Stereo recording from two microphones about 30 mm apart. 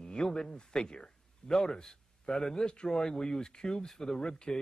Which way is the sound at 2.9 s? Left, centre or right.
Centre.